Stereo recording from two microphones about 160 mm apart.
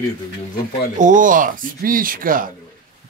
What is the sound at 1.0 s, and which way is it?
A man's voice, 55° right (ahead or behind).